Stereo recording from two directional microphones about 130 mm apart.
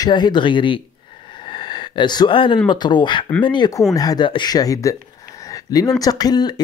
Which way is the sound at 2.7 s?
35° left (ahead or behind).